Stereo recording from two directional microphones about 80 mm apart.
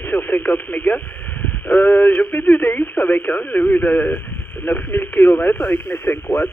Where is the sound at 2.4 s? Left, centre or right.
Left.